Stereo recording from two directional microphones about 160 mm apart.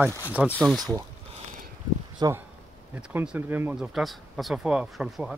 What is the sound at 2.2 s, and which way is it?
Speech, 20° right (ahead or behind).